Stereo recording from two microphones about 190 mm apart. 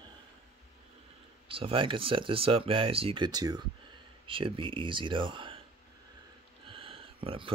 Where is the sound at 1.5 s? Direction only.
25° right (ahead or behind).